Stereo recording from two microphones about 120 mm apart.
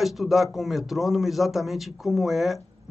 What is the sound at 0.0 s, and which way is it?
A man's voice, centre (ahead or behind).